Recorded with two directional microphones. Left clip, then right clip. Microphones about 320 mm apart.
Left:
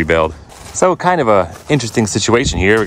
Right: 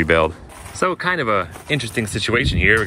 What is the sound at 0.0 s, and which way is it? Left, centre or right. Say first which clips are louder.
Speech: left 2 dB; centre.